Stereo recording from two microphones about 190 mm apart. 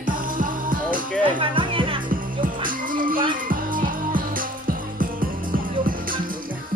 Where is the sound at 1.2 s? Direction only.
25° right (ahead or behind).